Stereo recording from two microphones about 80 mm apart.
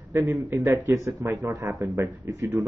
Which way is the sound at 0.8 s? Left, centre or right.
Right.